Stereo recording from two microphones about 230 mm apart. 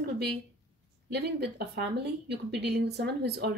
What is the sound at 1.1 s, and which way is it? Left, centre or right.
Speech, right.